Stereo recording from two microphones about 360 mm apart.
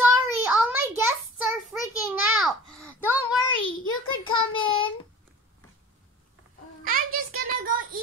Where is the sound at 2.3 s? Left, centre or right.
Centre.